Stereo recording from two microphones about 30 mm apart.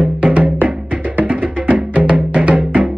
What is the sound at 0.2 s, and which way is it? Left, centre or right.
Music, right.